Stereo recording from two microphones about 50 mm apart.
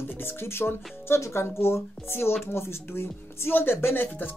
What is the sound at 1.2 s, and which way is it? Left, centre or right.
Speech, left.